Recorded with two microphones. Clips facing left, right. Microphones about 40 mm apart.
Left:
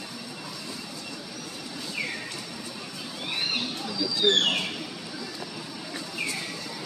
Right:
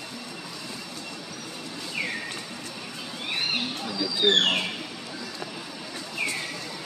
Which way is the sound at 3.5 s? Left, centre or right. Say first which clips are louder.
Right 1 dB; centre.